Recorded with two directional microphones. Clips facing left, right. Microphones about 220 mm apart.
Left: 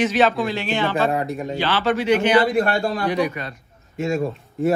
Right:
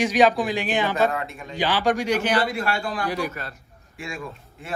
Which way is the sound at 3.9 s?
45° left (ahead or behind).